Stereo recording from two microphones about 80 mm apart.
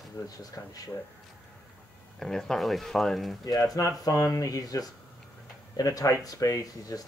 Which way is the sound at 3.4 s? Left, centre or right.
Left.